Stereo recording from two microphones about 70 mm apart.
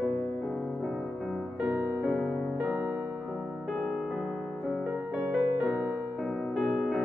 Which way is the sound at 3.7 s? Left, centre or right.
Centre.